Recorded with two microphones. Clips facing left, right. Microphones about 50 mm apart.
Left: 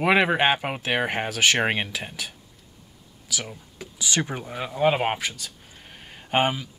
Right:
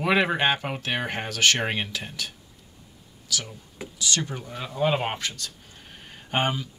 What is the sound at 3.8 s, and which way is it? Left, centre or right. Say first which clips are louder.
Speech: right 3 dB; centre.